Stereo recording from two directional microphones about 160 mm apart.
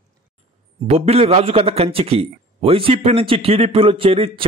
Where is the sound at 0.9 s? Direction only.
40° right (ahead or behind).